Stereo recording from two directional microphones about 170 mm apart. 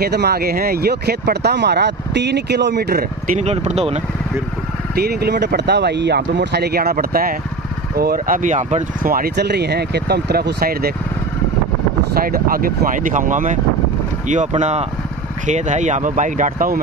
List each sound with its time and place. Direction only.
0.0 s speech: 70° right (ahead or behind)
3.3 s speech: 40° right (ahead or behind)
4.9 s speech: 70° right (ahead or behind)
12.1 s speech: 60° right (ahead or behind)